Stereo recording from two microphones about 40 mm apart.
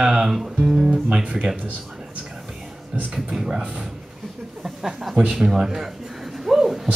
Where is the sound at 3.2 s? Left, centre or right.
Centre.